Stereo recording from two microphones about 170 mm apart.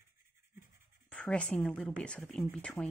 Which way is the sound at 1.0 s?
5° left (ahead or behind).